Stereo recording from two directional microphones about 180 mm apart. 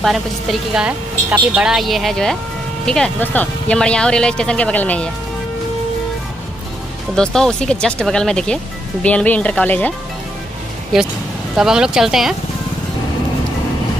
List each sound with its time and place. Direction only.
0.0 s speech: centre (ahead or behind)
7.2 s speech: 5° left (ahead or behind)
11.5 s speech: 5° right (ahead or behind)